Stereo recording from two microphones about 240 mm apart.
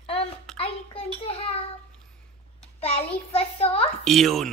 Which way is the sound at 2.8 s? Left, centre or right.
Left.